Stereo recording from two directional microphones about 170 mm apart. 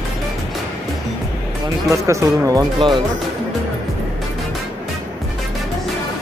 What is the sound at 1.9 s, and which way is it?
Speech, 15° right (ahead or behind).